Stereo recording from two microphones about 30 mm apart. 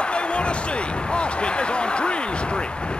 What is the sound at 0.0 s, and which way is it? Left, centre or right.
Slam, left.